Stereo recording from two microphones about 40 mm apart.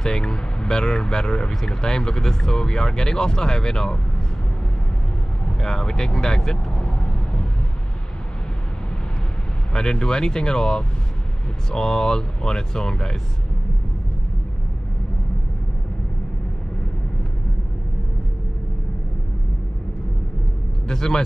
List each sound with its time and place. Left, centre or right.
0.0 s speech: centre
5.6 s vehicle: centre
9.7 s speech: centre
20.9 s speech: centre